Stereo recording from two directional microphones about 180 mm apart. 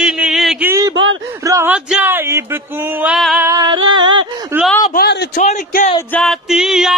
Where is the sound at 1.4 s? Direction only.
15° right (ahead or behind).